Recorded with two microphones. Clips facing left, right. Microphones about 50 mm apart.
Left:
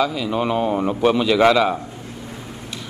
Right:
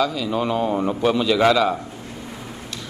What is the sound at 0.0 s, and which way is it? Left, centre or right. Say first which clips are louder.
A man's voice: left 1 dB; centre.